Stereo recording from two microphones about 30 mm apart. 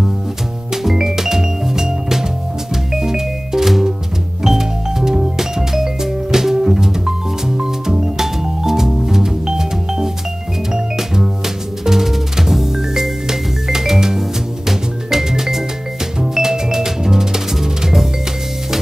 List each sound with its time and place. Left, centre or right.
0.8 s music: centre